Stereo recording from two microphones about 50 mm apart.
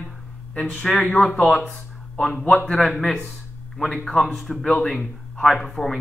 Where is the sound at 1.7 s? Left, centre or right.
Left.